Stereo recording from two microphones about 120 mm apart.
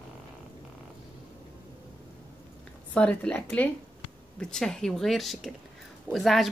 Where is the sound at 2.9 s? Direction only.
10° left (ahead or behind).